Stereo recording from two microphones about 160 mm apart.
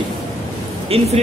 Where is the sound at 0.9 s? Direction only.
40° right (ahead or behind).